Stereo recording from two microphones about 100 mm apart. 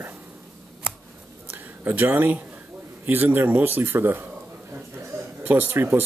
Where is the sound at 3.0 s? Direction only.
20° right (ahead or behind).